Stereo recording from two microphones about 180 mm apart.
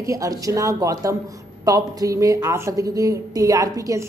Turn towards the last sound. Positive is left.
turn(degrees=-20)  # may be behind; listen again after turning